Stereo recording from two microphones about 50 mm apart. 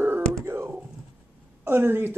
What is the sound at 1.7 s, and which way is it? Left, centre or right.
Speech, right.